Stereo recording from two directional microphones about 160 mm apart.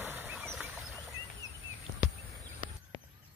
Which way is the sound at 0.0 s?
10° right (ahead or behind).